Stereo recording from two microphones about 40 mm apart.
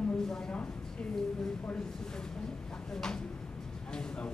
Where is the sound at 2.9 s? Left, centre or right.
Centre.